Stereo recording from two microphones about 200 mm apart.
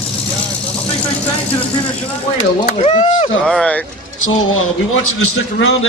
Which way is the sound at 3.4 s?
Centre (ahead or behind).